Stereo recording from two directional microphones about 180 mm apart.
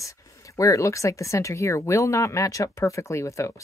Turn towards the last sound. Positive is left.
turn(degrees=15)  # may be behind; listen again after turning